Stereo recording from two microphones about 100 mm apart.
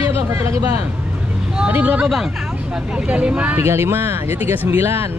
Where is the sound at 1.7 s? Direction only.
15° right (ahead or behind).